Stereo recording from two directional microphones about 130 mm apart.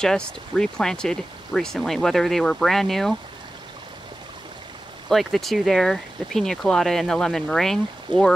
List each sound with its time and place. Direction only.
0.0 s speech: 5° left (ahead or behind)
5.1 s speech: centre (ahead or behind)